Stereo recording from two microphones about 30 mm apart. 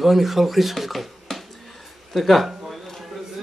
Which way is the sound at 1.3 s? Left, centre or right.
Centre.